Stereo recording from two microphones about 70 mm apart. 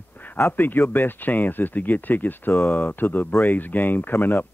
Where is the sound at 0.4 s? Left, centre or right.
Left.